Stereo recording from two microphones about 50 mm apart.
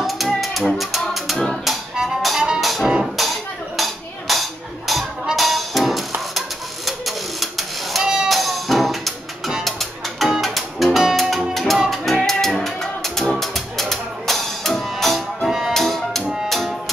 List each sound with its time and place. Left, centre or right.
0.4 s music: centre
3.7 s a sound: centre
5.3 s music: centre
6.9 s printer: centre
8.0 s music: centre
8.3 s music: centre